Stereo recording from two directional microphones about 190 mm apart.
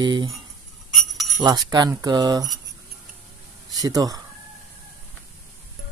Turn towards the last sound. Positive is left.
turn(degrees=-20)  # may be behind; listen again after turning